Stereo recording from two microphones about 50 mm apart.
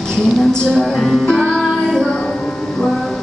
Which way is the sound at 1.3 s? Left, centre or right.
Centre.